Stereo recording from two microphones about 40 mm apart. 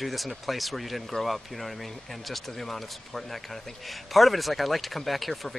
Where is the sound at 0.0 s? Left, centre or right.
Centre.